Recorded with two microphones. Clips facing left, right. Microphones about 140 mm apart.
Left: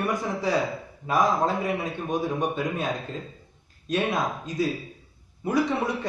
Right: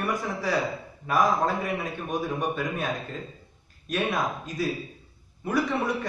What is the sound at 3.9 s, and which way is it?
Speech, 20° left (ahead or behind).